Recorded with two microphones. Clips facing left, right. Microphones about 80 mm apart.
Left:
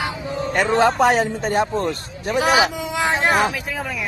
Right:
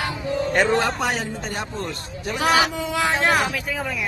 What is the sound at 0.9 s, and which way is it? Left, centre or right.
Speech, left.